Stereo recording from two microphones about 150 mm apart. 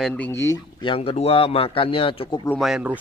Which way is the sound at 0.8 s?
35° left (ahead or behind).